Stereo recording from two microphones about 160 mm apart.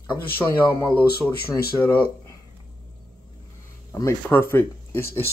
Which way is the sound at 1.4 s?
75° left (ahead or behind).